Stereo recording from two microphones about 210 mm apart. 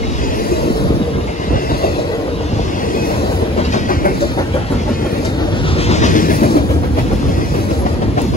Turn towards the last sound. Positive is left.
turn(degrees=45)  # may be behind; listen again after turning